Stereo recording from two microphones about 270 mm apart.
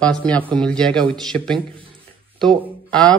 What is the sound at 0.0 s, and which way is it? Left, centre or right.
A man's voice, centre.